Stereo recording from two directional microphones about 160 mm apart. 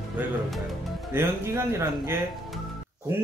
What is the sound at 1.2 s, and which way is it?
Speech, 15° right (ahead or behind).